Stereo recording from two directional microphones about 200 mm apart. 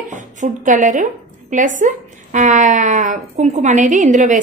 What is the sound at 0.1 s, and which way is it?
A woman's voice, 40° right (ahead or behind).